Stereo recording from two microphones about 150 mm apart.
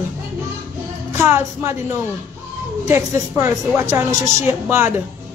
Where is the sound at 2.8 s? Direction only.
20° right (ahead or behind).